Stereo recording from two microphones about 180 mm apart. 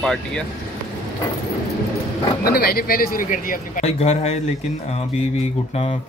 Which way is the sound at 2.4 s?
55° left (ahead or behind).